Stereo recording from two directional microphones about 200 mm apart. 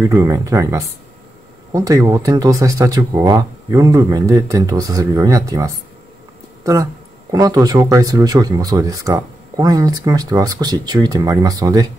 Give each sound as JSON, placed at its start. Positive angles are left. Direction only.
{"t": 0.0, "sound": "speech", "side_deg": -15}